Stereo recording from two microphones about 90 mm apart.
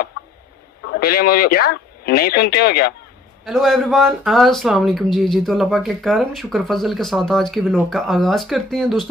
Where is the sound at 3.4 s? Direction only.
Centre (ahead or behind).